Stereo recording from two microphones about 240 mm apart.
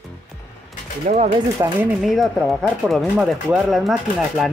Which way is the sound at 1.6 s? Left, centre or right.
Centre.